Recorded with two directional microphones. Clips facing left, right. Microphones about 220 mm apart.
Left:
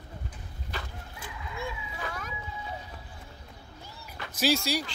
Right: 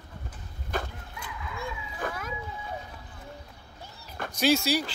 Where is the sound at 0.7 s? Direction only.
50° right (ahead or behind).